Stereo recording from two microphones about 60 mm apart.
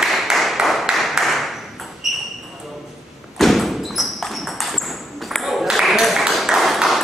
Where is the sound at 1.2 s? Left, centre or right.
Centre.